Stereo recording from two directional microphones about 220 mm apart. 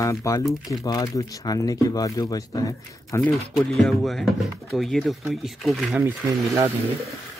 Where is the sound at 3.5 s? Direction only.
Centre (ahead or behind).